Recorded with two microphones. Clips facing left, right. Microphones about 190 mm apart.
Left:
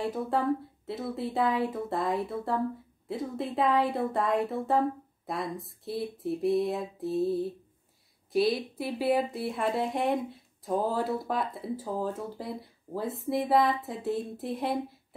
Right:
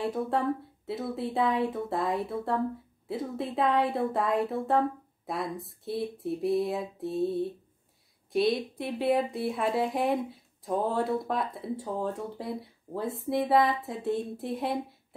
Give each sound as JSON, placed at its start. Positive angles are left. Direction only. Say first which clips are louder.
{"t": 0.0, "sound": "speech", "louder": "even", "side_deg": 0}